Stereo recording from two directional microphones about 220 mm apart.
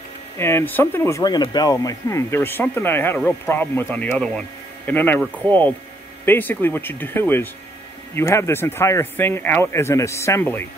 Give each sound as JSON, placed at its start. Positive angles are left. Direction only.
{"t": 0.4, "sound": "speech", "side_deg": 10}